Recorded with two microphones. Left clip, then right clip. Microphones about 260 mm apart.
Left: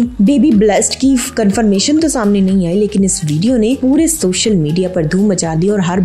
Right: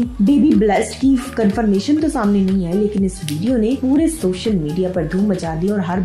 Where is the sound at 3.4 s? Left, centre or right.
Left.